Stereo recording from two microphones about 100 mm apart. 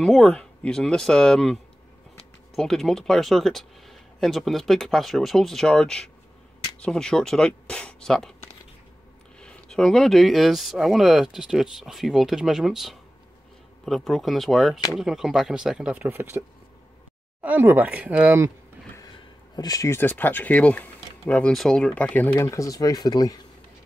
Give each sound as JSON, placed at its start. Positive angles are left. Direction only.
{"t": 0.0, "sound": "speech", "side_deg": 5}
{"t": 9.4, "sound": "speech", "side_deg": 10}
{"t": 16.1, "sound": "speech", "side_deg": -25}
{"t": 19.5, "sound": "speech", "side_deg": 40}
{"t": 19.9, "sound": "speech", "side_deg": 20}
{"t": 22.4, "sound": "speech", "side_deg": 35}